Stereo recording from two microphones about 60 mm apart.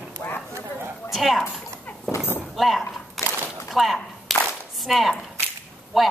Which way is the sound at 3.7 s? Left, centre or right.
Centre.